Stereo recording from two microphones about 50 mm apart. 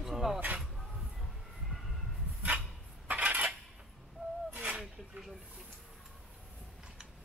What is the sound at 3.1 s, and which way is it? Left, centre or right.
Cutlery, right.